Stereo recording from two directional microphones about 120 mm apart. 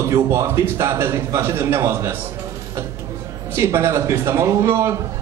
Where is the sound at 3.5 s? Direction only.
25° right (ahead or behind).